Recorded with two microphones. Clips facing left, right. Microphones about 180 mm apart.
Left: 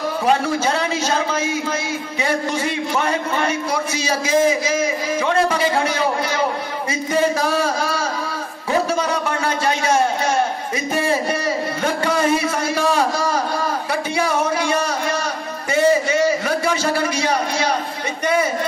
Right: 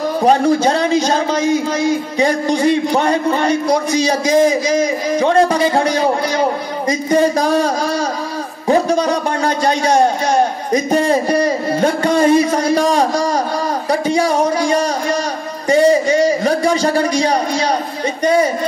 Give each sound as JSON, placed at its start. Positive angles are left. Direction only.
{"t": 0.2, "sound": "a man's voice", "side_deg": -40}